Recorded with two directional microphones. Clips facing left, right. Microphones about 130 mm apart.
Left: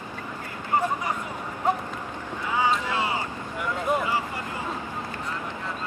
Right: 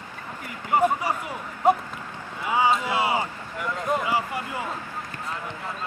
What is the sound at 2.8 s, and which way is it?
Speech, 15° right (ahead or behind).